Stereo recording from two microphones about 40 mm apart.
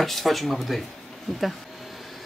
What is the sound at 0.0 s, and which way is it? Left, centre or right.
Speech, centre.